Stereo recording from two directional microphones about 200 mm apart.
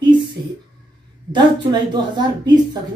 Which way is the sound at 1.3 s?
20° right (ahead or behind).